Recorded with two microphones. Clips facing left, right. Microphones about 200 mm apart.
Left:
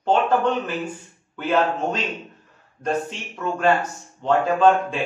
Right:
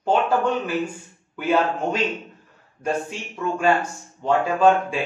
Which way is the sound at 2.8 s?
10° right (ahead or behind).